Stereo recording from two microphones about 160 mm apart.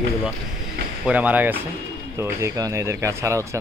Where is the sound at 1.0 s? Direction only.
10° right (ahead or behind).